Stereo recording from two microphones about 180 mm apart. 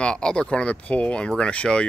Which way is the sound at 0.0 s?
5° left (ahead or behind).